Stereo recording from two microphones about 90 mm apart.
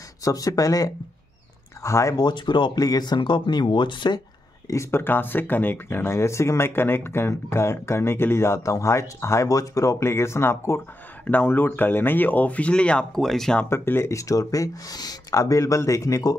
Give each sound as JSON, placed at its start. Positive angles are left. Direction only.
{"t": 0.2, "sound": "speech", "side_deg": 40}
{"t": 2.1, "sound": "speech", "side_deg": 55}
{"t": 4.6, "sound": "speech", "side_deg": 30}
{"t": 13.7, "sound": "speech", "side_deg": 25}